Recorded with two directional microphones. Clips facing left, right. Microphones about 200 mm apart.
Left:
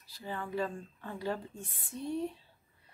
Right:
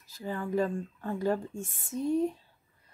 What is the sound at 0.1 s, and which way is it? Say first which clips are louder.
Speech: right 6 dB; 45° right (ahead or behind).